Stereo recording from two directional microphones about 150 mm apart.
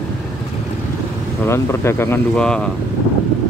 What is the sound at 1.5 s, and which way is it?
Speech, 15° left (ahead or behind).